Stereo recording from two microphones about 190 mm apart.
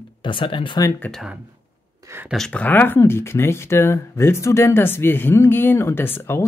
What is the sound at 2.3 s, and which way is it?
Speech, 5° left (ahead or behind).